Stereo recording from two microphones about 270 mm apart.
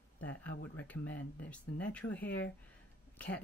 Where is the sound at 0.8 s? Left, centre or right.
Centre.